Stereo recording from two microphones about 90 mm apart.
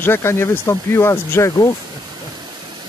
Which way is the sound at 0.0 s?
30° left (ahead or behind).